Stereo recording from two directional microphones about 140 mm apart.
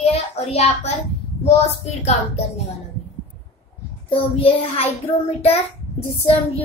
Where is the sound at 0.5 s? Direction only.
50° left (ahead or behind).